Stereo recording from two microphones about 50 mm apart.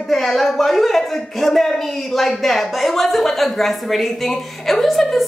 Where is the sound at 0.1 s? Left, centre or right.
Centre.